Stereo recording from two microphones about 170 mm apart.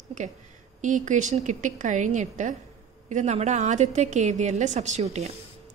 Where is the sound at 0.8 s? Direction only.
45° right (ahead or behind).